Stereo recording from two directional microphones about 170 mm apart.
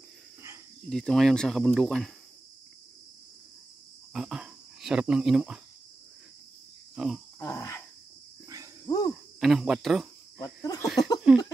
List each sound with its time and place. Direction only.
0.8 s speech: 5° left (ahead or behind)
4.1 s speech: 5° right (ahead or behind)
7.0 s speech: centre (ahead or behind)
7.3 s cricket: 20° left (ahead or behind)
8.8 s a sound: 20° left (ahead or behind)
9.4 s speech: centre (ahead or behind)
10.4 s speech: 20° left (ahead or behind)